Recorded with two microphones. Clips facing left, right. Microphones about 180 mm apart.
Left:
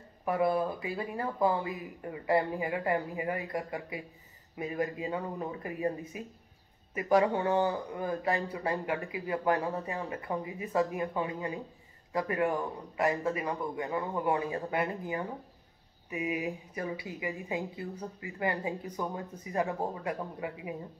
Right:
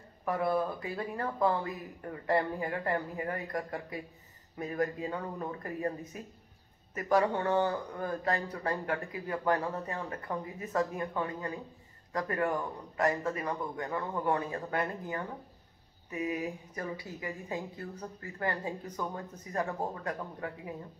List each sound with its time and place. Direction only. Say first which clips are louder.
0.2 s a man's voice: left 2 dB; 10° left (ahead or behind)